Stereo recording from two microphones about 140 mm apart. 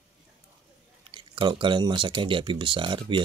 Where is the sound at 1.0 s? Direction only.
35° right (ahead or behind).